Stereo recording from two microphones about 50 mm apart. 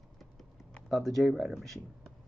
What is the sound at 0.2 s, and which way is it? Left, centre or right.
Typing, centre.